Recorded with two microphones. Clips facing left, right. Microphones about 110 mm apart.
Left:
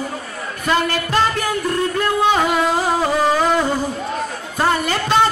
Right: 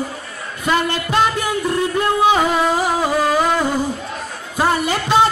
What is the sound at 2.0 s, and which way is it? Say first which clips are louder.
Music: right 2 dB; 10° right (ahead or behind).